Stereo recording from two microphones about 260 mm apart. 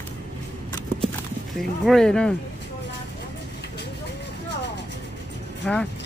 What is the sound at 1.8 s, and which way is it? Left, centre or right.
Speech, centre.